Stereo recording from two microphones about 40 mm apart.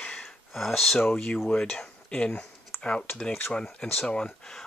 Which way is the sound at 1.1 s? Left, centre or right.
Left.